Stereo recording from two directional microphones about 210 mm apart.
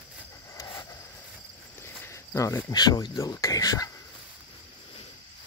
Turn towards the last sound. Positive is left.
turn(degrees=15)  # may be behind; listen again after turning